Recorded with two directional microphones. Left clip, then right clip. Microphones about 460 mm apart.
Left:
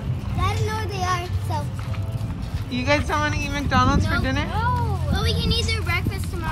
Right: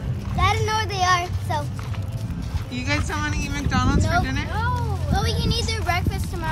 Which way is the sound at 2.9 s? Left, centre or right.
Centre.